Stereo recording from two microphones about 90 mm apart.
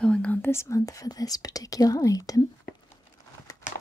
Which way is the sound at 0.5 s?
35° left (ahead or behind).